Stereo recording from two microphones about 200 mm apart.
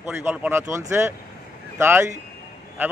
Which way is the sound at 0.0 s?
10° right (ahead or behind).